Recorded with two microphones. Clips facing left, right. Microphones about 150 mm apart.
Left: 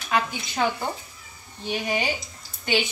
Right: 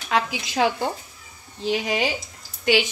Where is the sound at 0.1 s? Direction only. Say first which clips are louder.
Right 2 dB; 90° right.